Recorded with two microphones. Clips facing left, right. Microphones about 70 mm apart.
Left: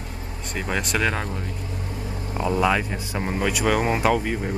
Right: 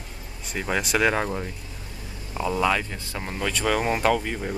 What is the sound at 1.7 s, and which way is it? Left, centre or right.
Vehicle, left.